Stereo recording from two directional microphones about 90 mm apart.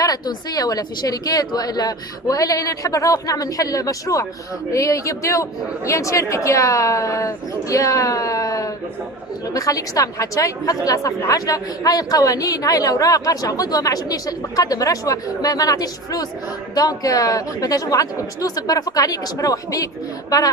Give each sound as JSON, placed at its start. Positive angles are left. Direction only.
{"t": 0.0, "sound": "a woman's voice", "side_deg": 45}